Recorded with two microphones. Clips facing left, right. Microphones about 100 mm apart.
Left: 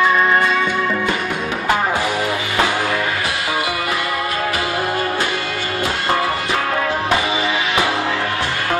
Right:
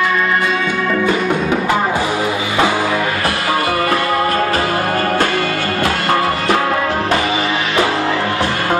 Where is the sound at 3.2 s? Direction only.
55° right (ahead or behind).